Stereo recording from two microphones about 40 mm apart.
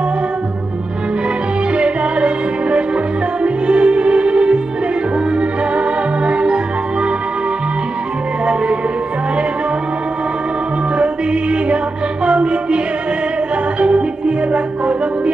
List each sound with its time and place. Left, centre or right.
1.8 s music: right
5.8 s organ: right
12.3 s music: right